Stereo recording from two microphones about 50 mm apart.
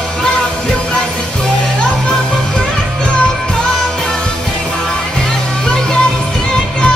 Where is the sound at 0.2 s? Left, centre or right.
Centre.